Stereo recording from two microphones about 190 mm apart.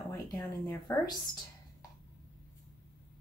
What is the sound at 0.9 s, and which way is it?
Speech, 15° left (ahead or behind).